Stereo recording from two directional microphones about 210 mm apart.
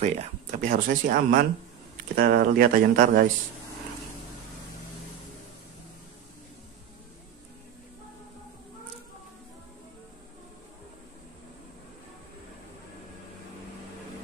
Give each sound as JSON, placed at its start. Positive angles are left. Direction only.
{"t": 0.0, "sound": "speech", "side_deg": -35}